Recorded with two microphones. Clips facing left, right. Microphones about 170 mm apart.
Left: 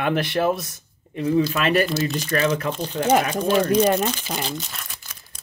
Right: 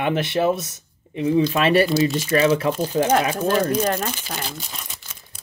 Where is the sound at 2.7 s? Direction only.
10° right (ahead or behind).